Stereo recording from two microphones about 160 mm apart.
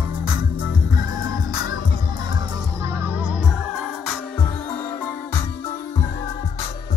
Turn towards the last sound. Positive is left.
turn(degrees=10)  # may be behind; listen again after turning